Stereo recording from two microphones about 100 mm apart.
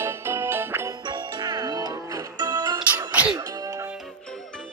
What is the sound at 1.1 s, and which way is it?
Music, 40° right (ahead or behind).